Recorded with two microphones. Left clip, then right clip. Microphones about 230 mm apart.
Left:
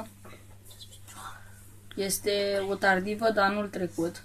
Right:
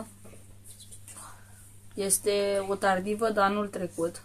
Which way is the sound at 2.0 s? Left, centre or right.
Centre.